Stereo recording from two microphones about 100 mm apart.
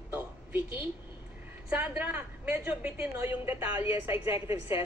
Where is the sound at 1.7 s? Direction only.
15° right (ahead or behind).